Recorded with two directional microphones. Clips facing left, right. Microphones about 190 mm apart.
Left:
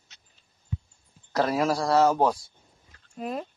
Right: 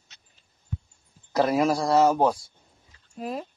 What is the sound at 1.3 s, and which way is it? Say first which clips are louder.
Speech: right 2 dB; 15° right (ahead or behind).